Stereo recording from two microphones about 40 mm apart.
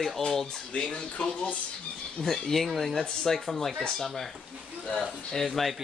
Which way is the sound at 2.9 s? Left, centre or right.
Centre.